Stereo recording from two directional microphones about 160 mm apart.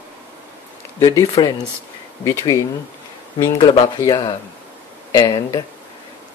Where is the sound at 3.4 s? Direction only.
25° left (ahead or behind).